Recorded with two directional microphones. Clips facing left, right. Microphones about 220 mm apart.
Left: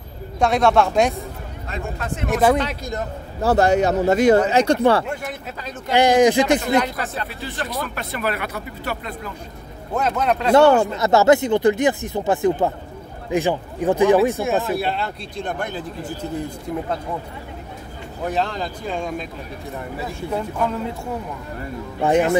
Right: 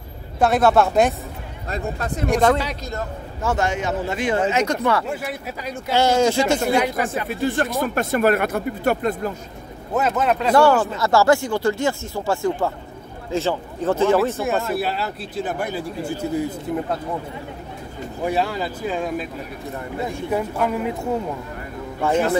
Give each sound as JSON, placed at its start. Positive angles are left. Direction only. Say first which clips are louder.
{"t": 0.4, "sound": "speech", "louder": "right 1 dB", "side_deg": -5}
{"t": 1.7, "sound": "speech", "louder": "right 2 dB", "side_deg": -40}
{"t": 2.2, "sound": "speech", "louder": "even", "side_deg": 0}
{"t": 2.8, "sound": "a man's voice", "louder": "left 2 dB", "side_deg": 15}
{"t": 3.3, "sound": "speech", "louder": "left 6 dB", "side_deg": 35}
{"t": 5.0, "sound": "speech", "louder": "right 1 dB", "side_deg": -5}
{"t": 5.9, "sound": "a man's voice", "louder": "left 3 dB", "side_deg": 15}
{"t": 6.8, "sound": "speech", "louder": "right 3 dB", "side_deg": -10}
{"t": 7.2, "sound": "speech", "louder": "right 8 dB", "side_deg": -50}
{"t": 9.9, "sound": "speech", "louder": "right 1 dB", "side_deg": 0}
{"t": 10.5, "sound": "a man's voice", "louder": "left 3 dB", "side_deg": 20}
{"t": 14.4, "sound": "speech", "louder": "left 1 dB", "side_deg": 0}
{"t": 18.2, "sound": "speech", "louder": "right 1 dB", "side_deg": -10}
{"t": 22.0, "sound": "a man's voice", "louder": "left 2 dB", "side_deg": 15}